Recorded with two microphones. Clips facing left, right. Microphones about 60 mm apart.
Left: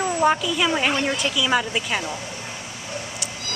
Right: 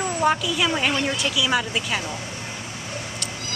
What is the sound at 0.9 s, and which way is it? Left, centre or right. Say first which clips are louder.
Speech: left 1 dB; centre.